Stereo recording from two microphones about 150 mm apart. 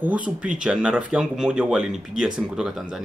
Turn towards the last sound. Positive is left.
turn(degrees=0)  # may be behind; listen again after turning